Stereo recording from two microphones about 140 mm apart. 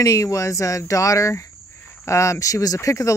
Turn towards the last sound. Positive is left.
turn(degrees=25)  # may be behind; listen again after turning